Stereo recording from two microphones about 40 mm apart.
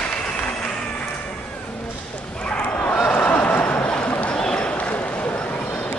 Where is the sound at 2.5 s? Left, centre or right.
Left.